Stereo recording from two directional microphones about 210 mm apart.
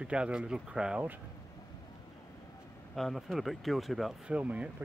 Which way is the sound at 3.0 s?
Centre (ahead or behind).